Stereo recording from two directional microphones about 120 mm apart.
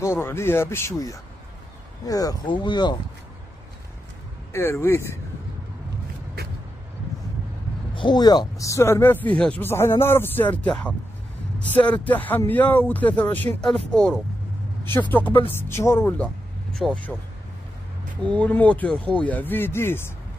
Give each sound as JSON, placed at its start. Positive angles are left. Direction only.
{"t": 0.0, "sound": "speech", "side_deg": 20}
{"t": 2.4, "sound": "speech", "side_deg": 40}
{"t": 4.5, "sound": "speech", "side_deg": 20}
{"t": 7.9, "sound": "speech", "side_deg": 40}
{"t": 16.7, "sound": "speech", "side_deg": 5}
{"t": 18.2, "sound": "speech", "side_deg": 10}